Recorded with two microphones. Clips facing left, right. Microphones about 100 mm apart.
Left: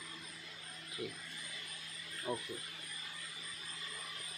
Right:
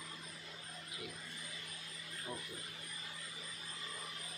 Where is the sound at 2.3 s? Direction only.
90° left.